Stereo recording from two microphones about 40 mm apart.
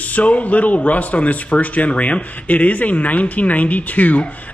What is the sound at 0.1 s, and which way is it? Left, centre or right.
Speech, left.